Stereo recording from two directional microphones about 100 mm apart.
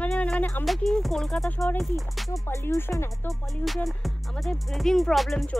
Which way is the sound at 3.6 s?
Centre (ahead or behind).